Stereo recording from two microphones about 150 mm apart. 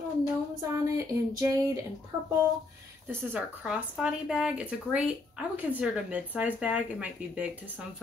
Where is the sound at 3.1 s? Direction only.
15° right (ahead or behind).